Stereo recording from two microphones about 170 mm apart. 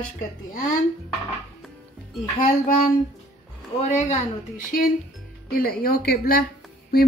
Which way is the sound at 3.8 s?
45° left (ahead or behind).